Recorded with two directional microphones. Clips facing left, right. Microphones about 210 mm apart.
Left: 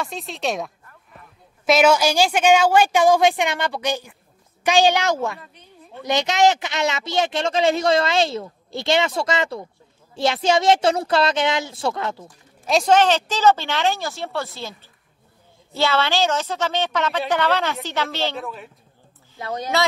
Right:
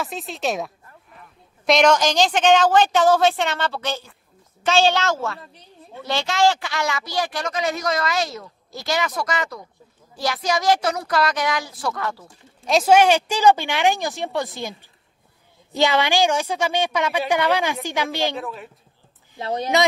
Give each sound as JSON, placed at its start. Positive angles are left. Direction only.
{"t": 0.0, "sound": "speech", "side_deg": 0}
{"t": 1.7, "sound": "a woman's voice", "side_deg": 5}
{"t": 5.4, "sound": "a woman's voice", "side_deg": -35}
{"t": 6.0, "sound": "speech", "side_deg": 20}
{"t": 12.6, "sound": "speech", "side_deg": -5}
{"t": 18.4, "sound": "speech", "side_deg": 0}
{"t": 19.4, "sound": "speech", "side_deg": -25}